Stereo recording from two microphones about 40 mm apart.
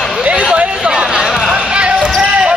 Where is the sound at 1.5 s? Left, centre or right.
Right.